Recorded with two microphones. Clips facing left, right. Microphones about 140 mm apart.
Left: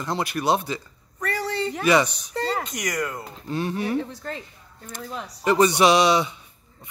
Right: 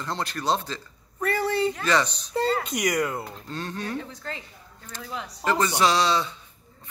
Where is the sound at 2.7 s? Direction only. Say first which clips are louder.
Right 3 dB; 10° right (ahead or behind).